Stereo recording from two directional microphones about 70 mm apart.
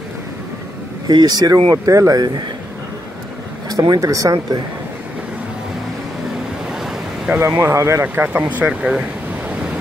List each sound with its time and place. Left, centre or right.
1.0 s speech: right
1.7 s speech: right
3.6 s a sound: right
4.0 s speech: right
6.7 s waves: centre
7.2 s speech: right
7.6 s speech: right
8.1 s speech: right